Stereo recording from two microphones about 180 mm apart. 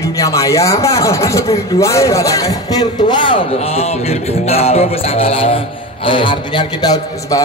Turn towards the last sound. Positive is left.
turn(degrees=20)  # may be behind; listen again after turning